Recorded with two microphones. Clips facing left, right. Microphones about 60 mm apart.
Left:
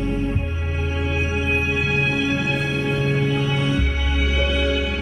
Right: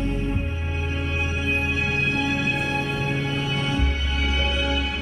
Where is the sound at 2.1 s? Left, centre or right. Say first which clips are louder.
Left 2 dB; centre.